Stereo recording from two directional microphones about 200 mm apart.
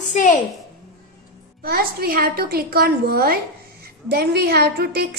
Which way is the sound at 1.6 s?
50° right (ahead or behind).